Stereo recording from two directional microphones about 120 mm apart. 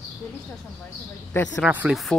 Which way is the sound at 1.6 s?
15° right (ahead or behind).